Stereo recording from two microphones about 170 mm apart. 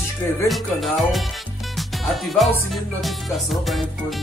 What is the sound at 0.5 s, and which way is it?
Music, centre (ahead or behind).